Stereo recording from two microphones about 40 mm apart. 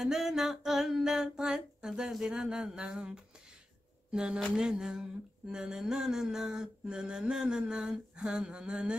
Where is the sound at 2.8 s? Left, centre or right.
Right.